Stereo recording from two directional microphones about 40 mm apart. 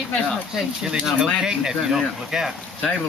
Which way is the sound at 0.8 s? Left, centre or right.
Centre.